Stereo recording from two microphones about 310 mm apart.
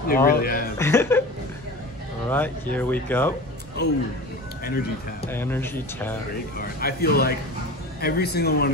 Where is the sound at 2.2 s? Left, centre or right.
Centre.